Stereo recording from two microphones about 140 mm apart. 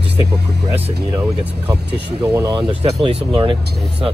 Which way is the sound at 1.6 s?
20° right (ahead or behind).